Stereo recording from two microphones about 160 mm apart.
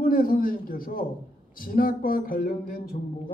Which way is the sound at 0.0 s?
65° left (ahead or behind).